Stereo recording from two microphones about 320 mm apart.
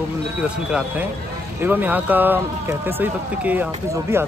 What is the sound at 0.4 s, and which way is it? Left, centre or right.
Speech, centre.